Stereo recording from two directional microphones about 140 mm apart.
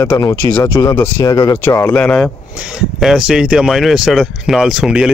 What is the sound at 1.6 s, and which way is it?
Speech, 15° left (ahead or behind).